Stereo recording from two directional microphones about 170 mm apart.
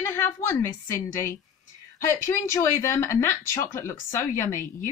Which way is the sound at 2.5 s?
15° left (ahead or behind).